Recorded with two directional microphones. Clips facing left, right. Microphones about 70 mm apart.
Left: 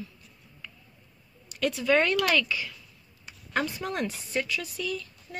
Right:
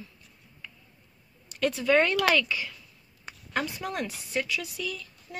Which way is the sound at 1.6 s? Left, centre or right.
Right.